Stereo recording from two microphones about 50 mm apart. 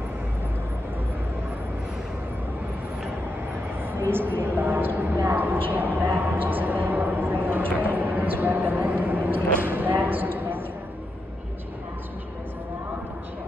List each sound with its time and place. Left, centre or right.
3.9 s speech: right